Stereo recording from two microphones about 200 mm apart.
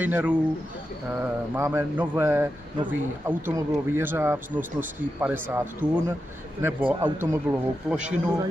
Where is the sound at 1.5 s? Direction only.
15° right (ahead or behind).